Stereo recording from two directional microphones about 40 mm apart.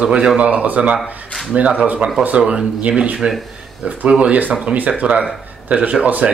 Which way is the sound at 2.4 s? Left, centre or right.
Right.